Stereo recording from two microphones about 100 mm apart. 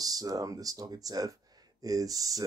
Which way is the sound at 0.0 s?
40° right (ahead or behind).